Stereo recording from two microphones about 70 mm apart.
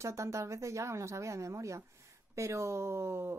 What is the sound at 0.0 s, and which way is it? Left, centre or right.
Speech, right.